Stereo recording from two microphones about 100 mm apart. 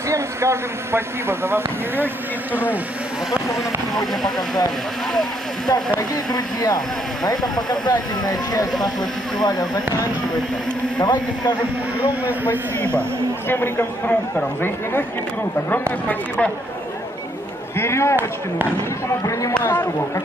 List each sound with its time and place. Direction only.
0.1 s speech: 25° right (ahead or behind)
5.7 s speech: 40° left (ahead or behind)
11.0 s speech: 45° left (ahead or behind)
13.5 s a man's voice: 20° left (ahead or behind)
16.1 s speech: 10° left (ahead or behind)
17.7 s a man's voice: 25° left (ahead or behind)
19.6 s a man's voice: 20° left (ahead or behind)